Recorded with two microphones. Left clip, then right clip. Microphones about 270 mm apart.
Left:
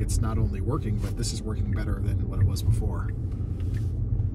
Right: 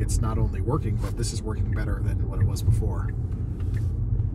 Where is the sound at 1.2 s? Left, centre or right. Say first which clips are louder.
Right 1 dB; centre.